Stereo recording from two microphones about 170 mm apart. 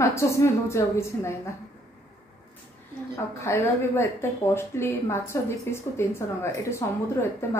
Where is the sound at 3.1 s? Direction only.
15° left (ahead or behind).